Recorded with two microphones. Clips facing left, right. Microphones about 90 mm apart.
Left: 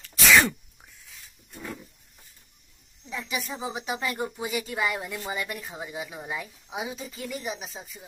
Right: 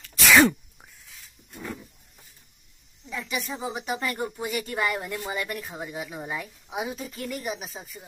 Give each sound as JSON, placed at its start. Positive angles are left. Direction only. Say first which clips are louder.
{"t": 0.0, "sound": "sneeze", "louder": "even", "side_deg": 0}
{"t": 3.1, "sound": "speech", "louder": "right 1 dB", "side_deg": 0}